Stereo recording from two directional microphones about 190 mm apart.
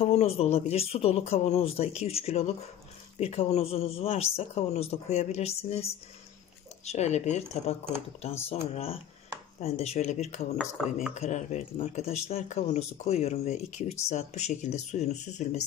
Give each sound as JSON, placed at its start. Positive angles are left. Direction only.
{"t": 0.0, "sound": "speech", "side_deg": 30}